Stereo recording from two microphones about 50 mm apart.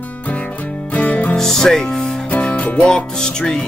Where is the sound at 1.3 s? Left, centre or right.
Centre.